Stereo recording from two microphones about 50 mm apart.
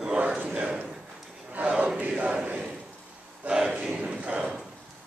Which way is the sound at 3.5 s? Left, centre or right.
Centre.